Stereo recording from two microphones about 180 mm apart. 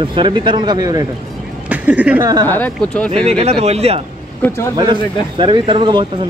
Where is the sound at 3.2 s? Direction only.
35° right (ahead or behind).